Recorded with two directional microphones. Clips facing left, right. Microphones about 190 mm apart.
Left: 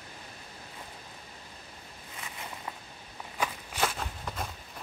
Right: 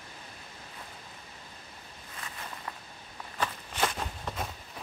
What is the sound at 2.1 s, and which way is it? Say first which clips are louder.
Walk: even; 15° left (ahead or behind).